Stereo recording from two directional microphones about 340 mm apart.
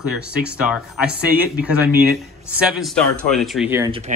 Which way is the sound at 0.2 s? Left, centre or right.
Centre.